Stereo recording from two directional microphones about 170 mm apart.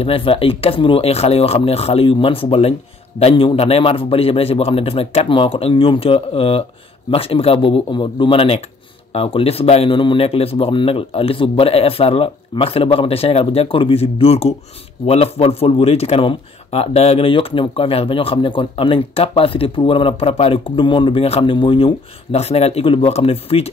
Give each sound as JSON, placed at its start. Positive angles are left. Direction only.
{"t": 0.0, "sound": "a man's voice", "side_deg": 30}